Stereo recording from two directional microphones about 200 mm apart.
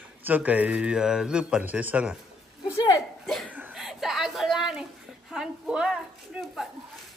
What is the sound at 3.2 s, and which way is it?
Cough, centre (ahead or behind).